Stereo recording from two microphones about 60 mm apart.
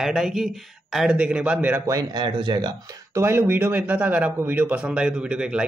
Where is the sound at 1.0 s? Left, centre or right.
Centre.